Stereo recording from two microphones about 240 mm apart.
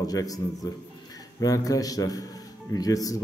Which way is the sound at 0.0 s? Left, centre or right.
Centre.